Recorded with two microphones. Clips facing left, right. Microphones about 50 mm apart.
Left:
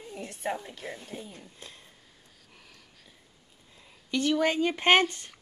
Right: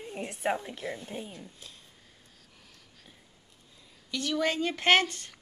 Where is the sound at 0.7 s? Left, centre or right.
Right.